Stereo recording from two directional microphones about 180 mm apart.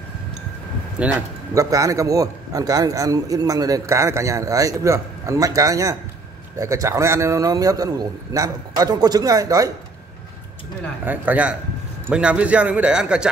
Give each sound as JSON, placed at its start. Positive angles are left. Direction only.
{"t": 1.0, "sound": "a man's voice", "side_deg": -5}
{"t": 1.5, "sound": "a man's voice", "side_deg": -20}
{"t": 11.1, "sound": "a man's voice", "side_deg": -10}